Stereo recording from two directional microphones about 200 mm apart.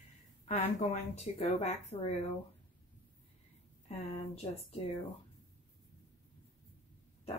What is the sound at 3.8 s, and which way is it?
Speech, 30° left (ahead or behind).